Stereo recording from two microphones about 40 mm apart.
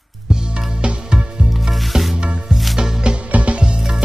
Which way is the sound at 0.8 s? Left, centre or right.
Right.